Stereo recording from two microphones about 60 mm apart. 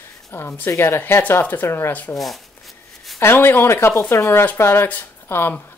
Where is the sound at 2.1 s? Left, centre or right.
Centre.